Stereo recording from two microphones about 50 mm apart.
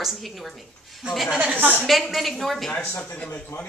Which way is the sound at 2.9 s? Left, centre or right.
Left.